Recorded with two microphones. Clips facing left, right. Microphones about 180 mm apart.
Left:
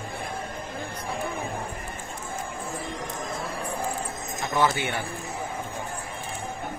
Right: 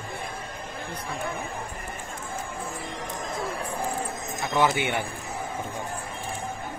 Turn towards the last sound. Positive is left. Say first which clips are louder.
# right 1 dB
turn(degrees=-15)  # may be behind; listen again after turning